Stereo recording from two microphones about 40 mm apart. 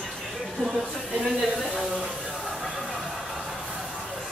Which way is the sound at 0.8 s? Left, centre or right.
Right.